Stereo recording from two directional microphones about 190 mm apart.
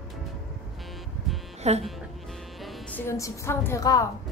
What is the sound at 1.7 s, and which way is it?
Speech, 35° right (ahead or behind).